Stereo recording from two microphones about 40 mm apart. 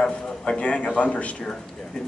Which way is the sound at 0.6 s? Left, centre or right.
Left.